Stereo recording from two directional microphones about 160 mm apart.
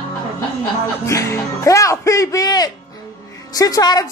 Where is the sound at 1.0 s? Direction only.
20° left (ahead or behind).